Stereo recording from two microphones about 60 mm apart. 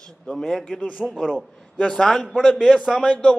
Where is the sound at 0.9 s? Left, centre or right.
Centre.